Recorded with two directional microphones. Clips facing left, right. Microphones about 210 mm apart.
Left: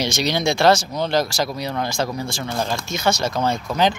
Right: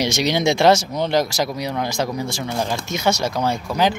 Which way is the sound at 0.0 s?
15° right (ahead or behind).